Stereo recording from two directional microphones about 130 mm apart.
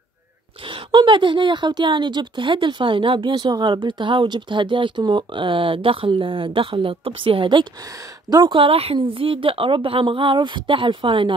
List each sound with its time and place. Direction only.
0.7 s a woman's voice: 40° right (ahead or behind)